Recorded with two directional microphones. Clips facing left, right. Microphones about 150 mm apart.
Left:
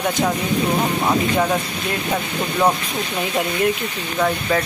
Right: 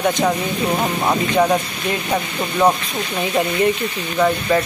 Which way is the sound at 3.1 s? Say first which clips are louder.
Right 4 dB; centre (ahead or behind).